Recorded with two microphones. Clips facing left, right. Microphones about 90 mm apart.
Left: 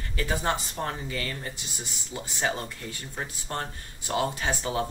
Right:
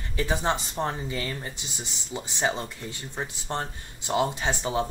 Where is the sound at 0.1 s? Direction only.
20° right (ahead or behind).